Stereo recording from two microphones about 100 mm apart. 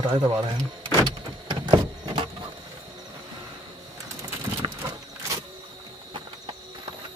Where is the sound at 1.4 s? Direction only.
50° right (ahead or behind).